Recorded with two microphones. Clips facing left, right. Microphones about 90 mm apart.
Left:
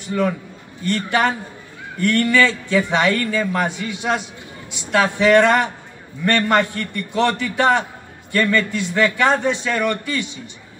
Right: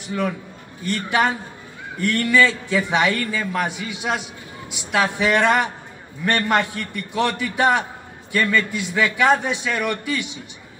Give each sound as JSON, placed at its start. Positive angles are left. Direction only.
{"t": 0.8, "sound": "a man's voice", "side_deg": -5}